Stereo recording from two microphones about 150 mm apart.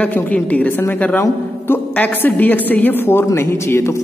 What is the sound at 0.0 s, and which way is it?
A woman's voice, 10° left (ahead or behind).